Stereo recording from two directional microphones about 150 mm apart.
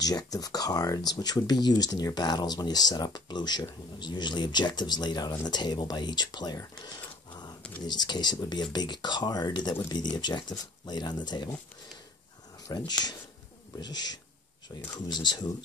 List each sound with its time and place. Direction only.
0.0 s speech: 25° left (ahead or behind)
12.6 s speech: 25° left (ahead or behind)